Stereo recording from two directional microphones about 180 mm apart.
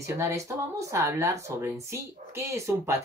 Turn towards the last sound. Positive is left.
turn(degrees=-15)  # may be behind; listen again after turning